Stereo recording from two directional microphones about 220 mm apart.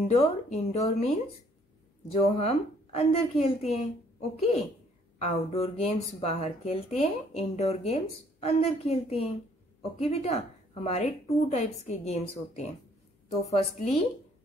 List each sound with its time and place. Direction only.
0.2 s a woman's voice: 30° left (ahead or behind)